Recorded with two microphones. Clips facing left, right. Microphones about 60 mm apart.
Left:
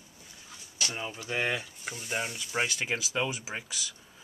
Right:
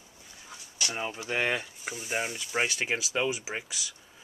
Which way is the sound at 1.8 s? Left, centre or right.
Centre.